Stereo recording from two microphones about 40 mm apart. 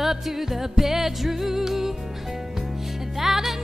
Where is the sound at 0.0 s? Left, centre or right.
Centre.